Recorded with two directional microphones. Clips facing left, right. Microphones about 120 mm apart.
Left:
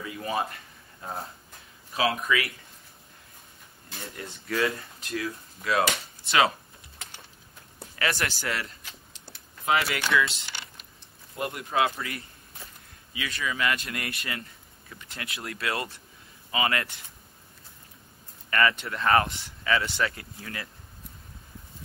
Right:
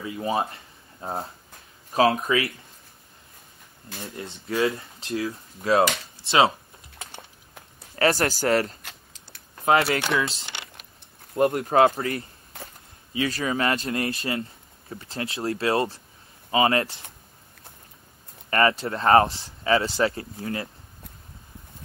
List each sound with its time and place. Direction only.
0.0 s speech: 25° right (ahead or behind)
4.2 s speech: 25° right (ahead or behind)
7.1 s a sound: 50° right (ahead or behind)
9.7 s speech: 35° right (ahead or behind)
11.3 s a man's voice: 45° right (ahead or behind)
13.1 s speech: 35° right (ahead or behind)
18.5 s speech: 35° right (ahead or behind)